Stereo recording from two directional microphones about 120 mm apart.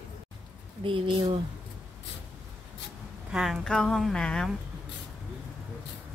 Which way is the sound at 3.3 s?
Centre (ahead or behind).